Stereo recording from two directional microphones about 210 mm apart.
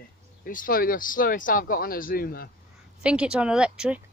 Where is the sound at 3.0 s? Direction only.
5° right (ahead or behind).